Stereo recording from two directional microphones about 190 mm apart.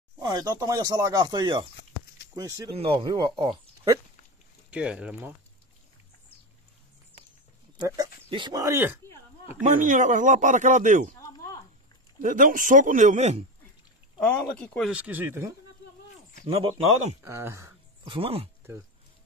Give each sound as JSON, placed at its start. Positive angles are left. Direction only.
{"t": 0.2, "sound": "speech", "side_deg": -20}
{"t": 2.7, "sound": "speech", "side_deg": -30}
{"t": 4.6, "sound": "speech", "side_deg": -5}
{"t": 7.7, "sound": "speech", "side_deg": -20}
{"t": 9.6, "sound": "speech", "side_deg": -40}
{"t": 11.1, "sound": "a sound", "side_deg": 20}
{"t": 12.2, "sound": "a man's voice", "side_deg": -45}
{"t": 14.2, "sound": "speech", "side_deg": 5}
{"t": 14.9, "sound": "speech", "side_deg": -5}
{"t": 16.4, "sound": "speech", "side_deg": -30}
{"t": 17.2, "sound": "speech", "side_deg": -15}
{"t": 18.0, "sound": "speech", "side_deg": -30}